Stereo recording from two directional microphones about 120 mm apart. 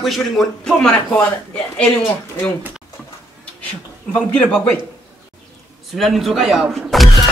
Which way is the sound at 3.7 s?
10° left (ahead or behind).